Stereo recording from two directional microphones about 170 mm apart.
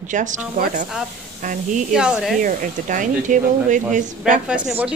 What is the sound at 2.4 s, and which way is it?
Speech, 50° right (ahead or behind).